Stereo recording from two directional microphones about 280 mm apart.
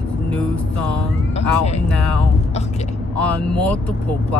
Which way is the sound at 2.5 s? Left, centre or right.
Left.